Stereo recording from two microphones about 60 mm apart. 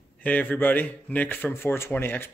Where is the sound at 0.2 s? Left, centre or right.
Left.